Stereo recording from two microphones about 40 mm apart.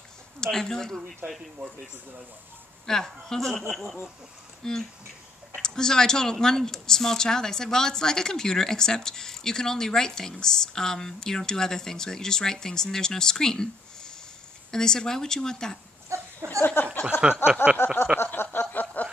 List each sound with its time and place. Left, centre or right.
0.4 s a woman's voice: centre
1.2 s speech: right
2.9 s a woman's voice: centre
4.6 s a woman's voice: centre
16.4 s speech: left
17.1 s a sound: left
18.2 s a sound: left
18.6 s snicker: left